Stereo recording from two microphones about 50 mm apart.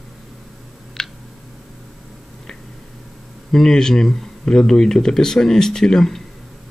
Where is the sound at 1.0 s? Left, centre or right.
Centre.